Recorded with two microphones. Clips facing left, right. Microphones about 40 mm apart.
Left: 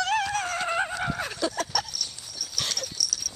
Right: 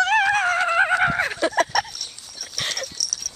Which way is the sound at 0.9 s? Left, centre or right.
Right.